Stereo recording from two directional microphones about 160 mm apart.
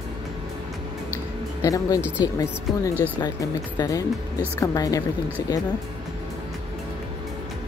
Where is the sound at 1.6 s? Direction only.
20° left (ahead or behind).